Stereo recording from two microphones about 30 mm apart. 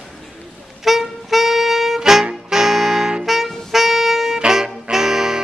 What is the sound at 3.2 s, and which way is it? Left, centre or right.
Saxophone, centre.